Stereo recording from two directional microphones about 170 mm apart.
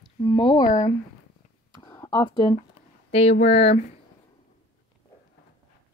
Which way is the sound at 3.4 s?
40° left (ahead or behind).